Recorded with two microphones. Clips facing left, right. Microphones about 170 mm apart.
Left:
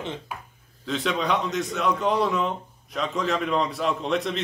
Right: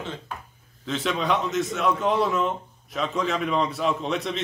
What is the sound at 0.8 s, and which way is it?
A man's voice, centre (ahead or behind).